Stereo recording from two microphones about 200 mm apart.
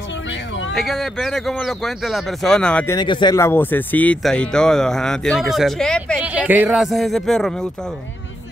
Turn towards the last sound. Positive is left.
turn(degrees=5)  # may be behind; listen again after turning